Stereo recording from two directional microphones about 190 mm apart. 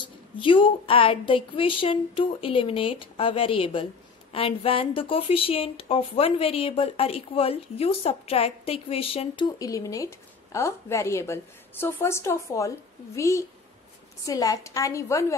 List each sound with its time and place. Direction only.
0.4 s a woman's voice: 25° left (ahead or behind)